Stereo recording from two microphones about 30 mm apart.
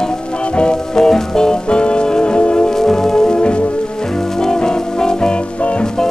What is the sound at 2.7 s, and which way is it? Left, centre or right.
Music, centre.